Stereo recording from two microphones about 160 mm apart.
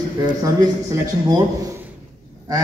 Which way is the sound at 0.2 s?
20° right (ahead or behind).